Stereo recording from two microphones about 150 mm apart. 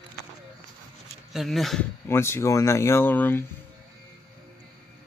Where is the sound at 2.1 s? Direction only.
15° left (ahead or behind).